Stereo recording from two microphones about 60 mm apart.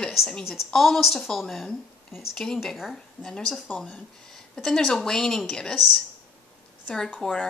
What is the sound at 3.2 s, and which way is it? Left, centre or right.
Speech, centre.